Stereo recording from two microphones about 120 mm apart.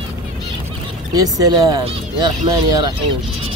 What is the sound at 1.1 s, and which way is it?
Speech, 30° right (ahead or behind).